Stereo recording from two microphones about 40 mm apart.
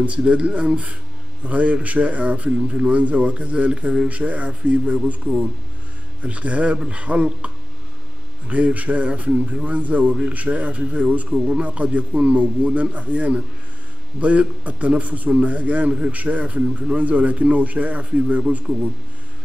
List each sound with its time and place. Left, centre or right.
0.0 s a man's voice: right